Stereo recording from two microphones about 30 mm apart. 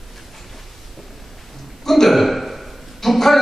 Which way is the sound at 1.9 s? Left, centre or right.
Centre.